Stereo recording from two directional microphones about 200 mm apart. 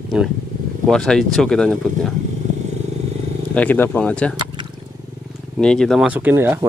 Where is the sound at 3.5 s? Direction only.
5° left (ahead or behind).